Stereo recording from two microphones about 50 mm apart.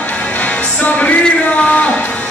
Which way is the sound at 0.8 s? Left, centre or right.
Left.